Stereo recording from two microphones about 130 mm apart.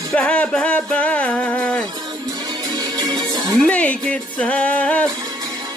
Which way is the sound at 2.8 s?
30° right (ahead or behind).